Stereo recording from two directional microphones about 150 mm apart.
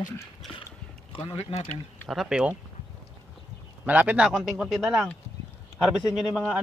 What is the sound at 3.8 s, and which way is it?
Speech, 10° right (ahead or behind).